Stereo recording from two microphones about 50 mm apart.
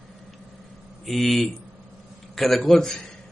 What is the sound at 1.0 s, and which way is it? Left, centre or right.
Speech, centre.